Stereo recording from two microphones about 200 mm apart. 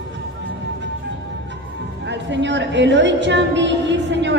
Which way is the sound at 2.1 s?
60° right (ahead or behind).